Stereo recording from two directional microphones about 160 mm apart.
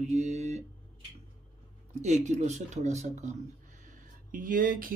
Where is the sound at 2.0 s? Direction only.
45° right (ahead or behind).